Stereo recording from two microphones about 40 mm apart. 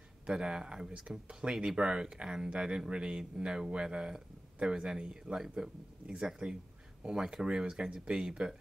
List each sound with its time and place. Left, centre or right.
0.3 s speech: centre
5.1 s speech: right